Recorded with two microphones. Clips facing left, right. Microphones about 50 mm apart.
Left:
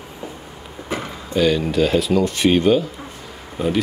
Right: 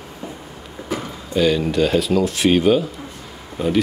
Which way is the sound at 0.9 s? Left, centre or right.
Left.